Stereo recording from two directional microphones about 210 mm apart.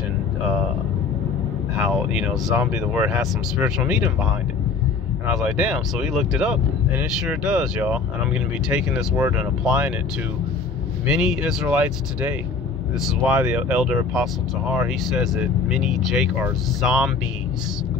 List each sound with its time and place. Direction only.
1.9 s speech: 5° right (ahead or behind)
11.1 s speech: 5° right (ahead or behind)